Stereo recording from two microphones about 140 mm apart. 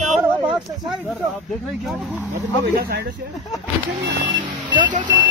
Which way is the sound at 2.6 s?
90° right.